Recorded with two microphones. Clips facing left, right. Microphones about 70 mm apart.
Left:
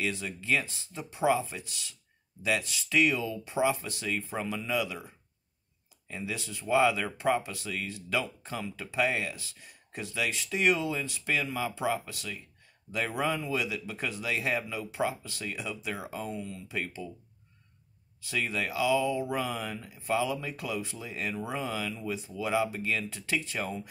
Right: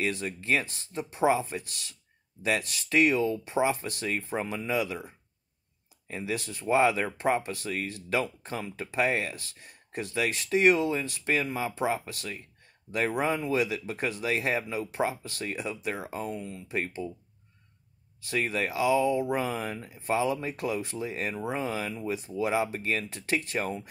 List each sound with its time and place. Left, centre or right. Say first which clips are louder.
0.1 s speech: right 2 dB; right
6.0 s speech: right 4 dB; right
9.3 s speech: right 1 dB; right
14.3 s speech: right 1 dB; right
18.2 s speech: right 3 dB; right
22.1 s speech: right 2 dB; right